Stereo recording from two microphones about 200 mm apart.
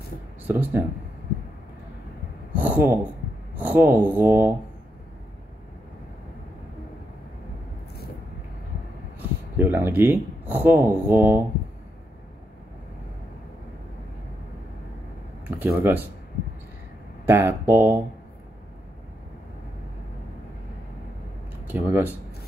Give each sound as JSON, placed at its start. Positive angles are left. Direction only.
{"t": 0.5, "sound": "speech", "side_deg": -10}
{"t": 2.5, "sound": "a sound", "side_deg": -10}
{"t": 3.5, "sound": "speech", "side_deg": -10}
{"t": 9.6, "sound": "speech", "side_deg": -10}
{"t": 15.4, "sound": "speech", "side_deg": -10}
{"t": 17.3, "sound": "speech", "side_deg": -10}
{"t": 21.6, "sound": "speech", "side_deg": -10}